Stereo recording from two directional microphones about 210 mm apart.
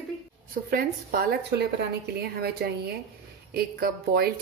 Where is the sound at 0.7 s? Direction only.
45° right (ahead or behind).